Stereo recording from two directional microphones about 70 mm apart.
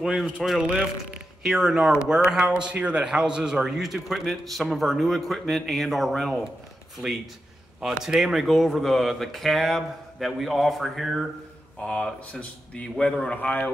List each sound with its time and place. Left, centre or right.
0.0 s speech: centre
0.6 s a man's voice: centre
1.4 s speech: centre
7.8 s speech: centre
11.8 s speech: centre
12.9 s speech: centre
13.3 s a man's voice: left